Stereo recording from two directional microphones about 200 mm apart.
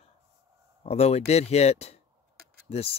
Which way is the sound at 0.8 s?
30° left (ahead or behind).